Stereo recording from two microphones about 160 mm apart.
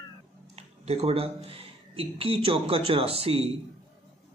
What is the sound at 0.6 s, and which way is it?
Speech, 40° right (ahead or behind).